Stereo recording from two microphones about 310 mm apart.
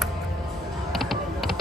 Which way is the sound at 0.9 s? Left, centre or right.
Centre.